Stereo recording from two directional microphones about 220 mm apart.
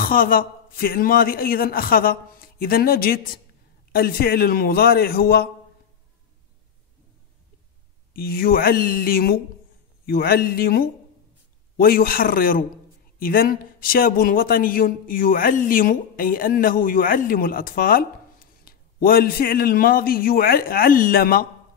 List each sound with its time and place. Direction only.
0.0 s a man's voice: 40° left (ahead or behind)
8.1 s a man's voice: 40° left (ahead or behind)